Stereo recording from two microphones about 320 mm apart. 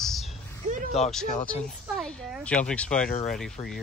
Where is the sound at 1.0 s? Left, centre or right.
Centre.